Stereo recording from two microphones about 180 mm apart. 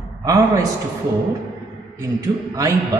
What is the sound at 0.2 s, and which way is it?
Speech, 20° right (ahead or behind).